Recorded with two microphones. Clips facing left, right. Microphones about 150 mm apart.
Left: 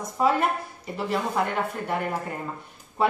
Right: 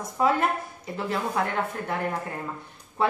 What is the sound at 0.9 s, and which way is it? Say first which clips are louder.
A woman's voice: left 1 dB; 5° left (ahead or behind).